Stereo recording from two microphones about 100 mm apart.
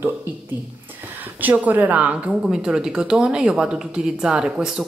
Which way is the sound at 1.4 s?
15° right (ahead or behind).